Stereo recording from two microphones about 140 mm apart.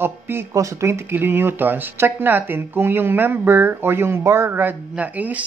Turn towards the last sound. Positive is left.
turn(degrees=-10)  # may be behind; listen again after turning